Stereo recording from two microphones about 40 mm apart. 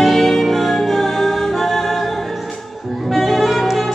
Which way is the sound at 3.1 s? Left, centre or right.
Centre.